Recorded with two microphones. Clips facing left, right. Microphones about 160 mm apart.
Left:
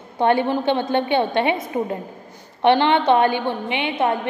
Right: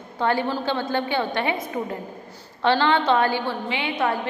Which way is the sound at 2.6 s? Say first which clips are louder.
Left 4 dB; 20° left (ahead or behind).